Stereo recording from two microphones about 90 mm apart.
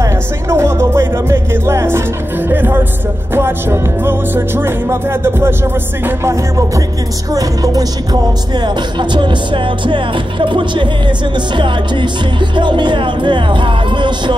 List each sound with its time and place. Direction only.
0.0 s music: 30° right (ahead or behind)
7.3 s music: 45° right (ahead or behind); by 14.3 s 60° right (ahead or behind)